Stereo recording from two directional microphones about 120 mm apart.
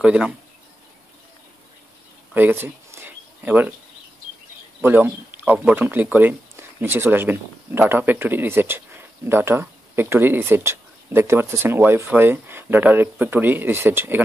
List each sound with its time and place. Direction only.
0.0 s speech: 10° right (ahead or behind)
2.3 s a sound: 15° right (ahead or behind)
4.8 s speech: 15° right (ahead or behind)